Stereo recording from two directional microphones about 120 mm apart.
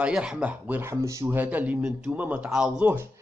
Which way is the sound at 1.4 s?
15° right (ahead or behind).